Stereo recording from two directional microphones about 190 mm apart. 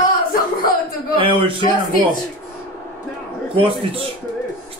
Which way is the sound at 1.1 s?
25° right (ahead or behind).